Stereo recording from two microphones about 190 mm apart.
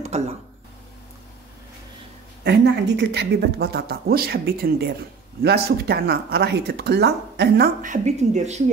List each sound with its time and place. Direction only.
0.1 s speech: 35° right (ahead or behind)
2.4 s a woman's voice: 65° right (ahead or behind); by 8.6 s 35° right (ahead or behind)